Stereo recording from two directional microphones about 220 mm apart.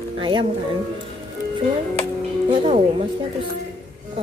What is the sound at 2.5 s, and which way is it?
Speech, 25° right (ahead or behind).